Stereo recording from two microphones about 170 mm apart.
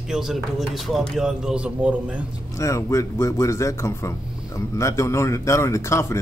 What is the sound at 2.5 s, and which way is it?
Speech, 15° left (ahead or behind).